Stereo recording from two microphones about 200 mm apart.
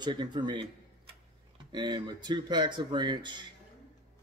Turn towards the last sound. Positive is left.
turn(degrees=-20)  # may be behind; listen again after turning